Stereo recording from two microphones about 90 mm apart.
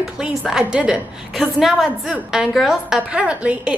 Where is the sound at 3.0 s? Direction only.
15° right (ahead or behind).